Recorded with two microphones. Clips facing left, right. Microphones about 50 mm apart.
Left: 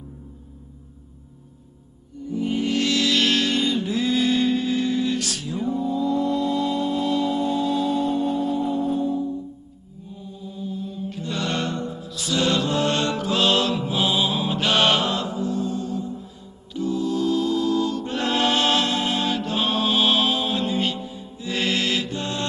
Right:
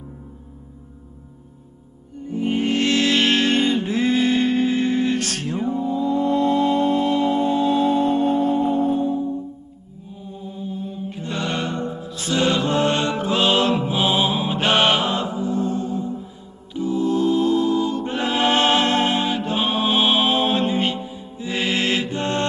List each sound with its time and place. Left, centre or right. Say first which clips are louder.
2.2 s music: right 2 dB; right
5.6 s mantra: right 1 dB; right
10.3 s mantra: right 2 dB; right
11.4 s chant: right 1 dB; centre
11.8 s music: right 3 dB; right
12.6 s mantra: right 3 dB; right
16.7 s music: right 3 dB; right
18.2 s choir: right 1 dB; centre
18.5 s music: right 3 dB; right
19.2 s music: right 2 dB; centre
20.3 s music: right 4 dB; right; by 21.8 s centre
21.8 s mantra: right 3 dB; right